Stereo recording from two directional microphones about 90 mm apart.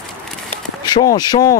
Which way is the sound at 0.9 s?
45° left (ahead or behind).